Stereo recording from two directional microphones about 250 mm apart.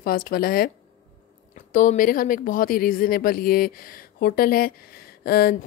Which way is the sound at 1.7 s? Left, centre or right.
Left.